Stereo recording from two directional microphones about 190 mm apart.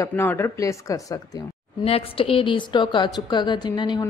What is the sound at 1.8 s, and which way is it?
A woman's voice, 30° left (ahead or behind).